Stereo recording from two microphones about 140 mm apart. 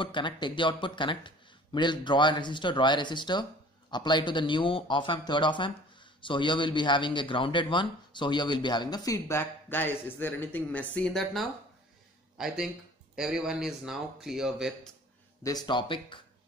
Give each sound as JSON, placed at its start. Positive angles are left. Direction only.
{"t": 0.0, "sound": "speech", "side_deg": 35}
{"t": 15.4, "sound": "speech", "side_deg": 30}